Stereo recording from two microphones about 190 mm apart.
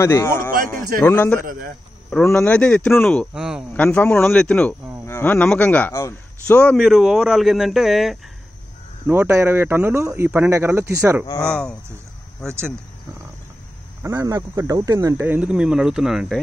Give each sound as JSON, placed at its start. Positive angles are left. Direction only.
{"t": 0.0, "sound": "speech", "side_deg": 15}
{"t": 0.7, "sound": "a man's voice", "side_deg": -45}
{"t": 1.0, "sound": "speech", "side_deg": 10}
{"t": 1.4, "sound": "a man's voice", "side_deg": -50}
{"t": 2.0, "sound": "a man's voice", "side_deg": 5}
{"t": 3.7, "sound": "a man's voice", "side_deg": 5}
{"t": 11.2, "sound": "speech", "side_deg": 15}
{"t": 12.4, "sound": "a man's voice", "side_deg": 0}
{"t": 14.0, "sound": "speech", "side_deg": -15}